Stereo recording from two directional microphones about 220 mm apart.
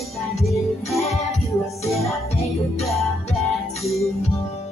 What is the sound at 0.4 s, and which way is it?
Music, centre (ahead or behind).